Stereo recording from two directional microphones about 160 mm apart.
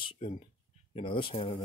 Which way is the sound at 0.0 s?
30° left (ahead or behind).